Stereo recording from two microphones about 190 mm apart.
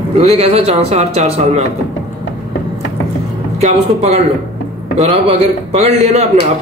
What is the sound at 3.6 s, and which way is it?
Speech, 35° right (ahead or behind).